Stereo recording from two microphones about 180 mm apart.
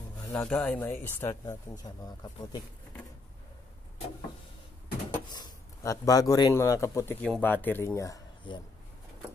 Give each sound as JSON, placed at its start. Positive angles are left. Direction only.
{"t": 0.2, "sound": "speech", "side_deg": 10}
{"t": 5.3, "sound": "a man's voice", "side_deg": 20}